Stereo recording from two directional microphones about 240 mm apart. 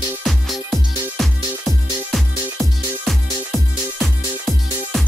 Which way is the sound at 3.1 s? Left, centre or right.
Centre.